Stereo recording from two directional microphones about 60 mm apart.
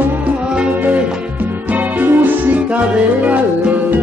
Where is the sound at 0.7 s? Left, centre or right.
Right.